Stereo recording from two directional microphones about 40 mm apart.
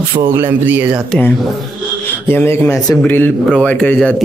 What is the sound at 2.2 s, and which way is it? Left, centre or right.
Speech, left.